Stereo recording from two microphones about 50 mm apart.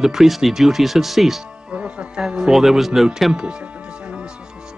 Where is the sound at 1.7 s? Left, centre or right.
Centre.